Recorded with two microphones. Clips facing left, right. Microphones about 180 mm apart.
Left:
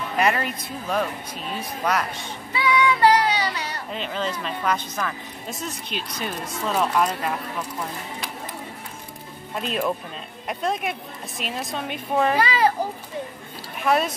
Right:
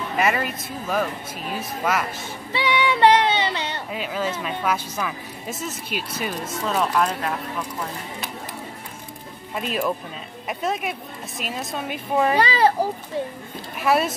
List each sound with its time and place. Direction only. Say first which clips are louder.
0.2 s a woman's voice: even; 5° right (ahead or behind)
2.5 s child singing: left 1 dB; 30° right (ahead or behind)
3.9 s a woman's voice: right 1 dB; 5° right (ahead or behind)
9.6 s a woman's voice: even; 5° right (ahead or behind)
12.4 s a child's voice: right 2 dB; 35° right (ahead or behind)
13.7 s a woman's voice: right 1 dB; 5° right (ahead or behind)